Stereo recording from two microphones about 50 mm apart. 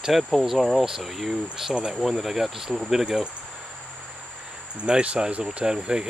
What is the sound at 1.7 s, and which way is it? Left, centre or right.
Speech, centre.